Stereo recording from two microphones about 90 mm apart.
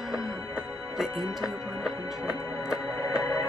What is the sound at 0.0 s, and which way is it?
Music, 5° right (ahead or behind).